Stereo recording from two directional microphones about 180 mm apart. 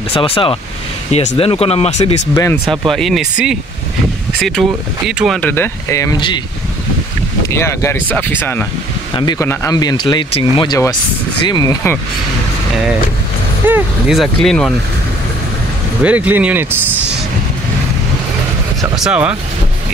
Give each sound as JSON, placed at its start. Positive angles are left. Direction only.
{"t": 0.1, "sound": "speech", "side_deg": 30}
{"t": 2.3, "sound": "speech", "side_deg": 15}
{"t": 2.6, "sound": "speech", "side_deg": 0}
{"t": 5.4, "sound": "speech", "side_deg": 10}
{"t": 7.4, "sound": "speech", "side_deg": 15}
{"t": 9.1, "sound": "speech", "side_deg": 25}
{"t": 13.7, "sound": "speech", "side_deg": -5}
{"t": 16.0, "sound": "speech", "side_deg": -10}
{"t": 18.9, "sound": "speech", "side_deg": -5}